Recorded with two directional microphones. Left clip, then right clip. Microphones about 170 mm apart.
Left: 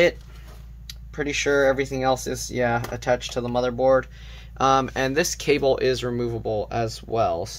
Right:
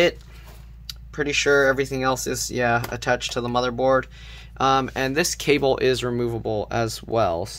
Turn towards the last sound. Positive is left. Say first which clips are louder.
# right 1 dB
turn(degrees=-40)  # may be behind; listen again after turning